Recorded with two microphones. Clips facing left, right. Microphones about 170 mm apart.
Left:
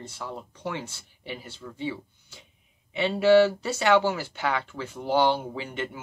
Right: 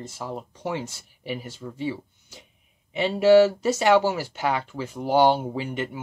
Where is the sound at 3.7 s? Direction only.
15° right (ahead or behind).